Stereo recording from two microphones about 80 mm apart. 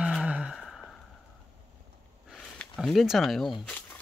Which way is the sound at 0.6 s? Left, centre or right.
Centre.